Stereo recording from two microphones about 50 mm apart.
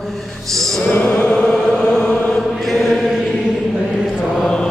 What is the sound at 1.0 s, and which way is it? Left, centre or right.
Chant, left.